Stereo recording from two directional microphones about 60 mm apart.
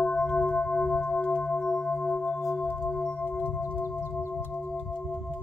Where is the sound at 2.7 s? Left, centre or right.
Left.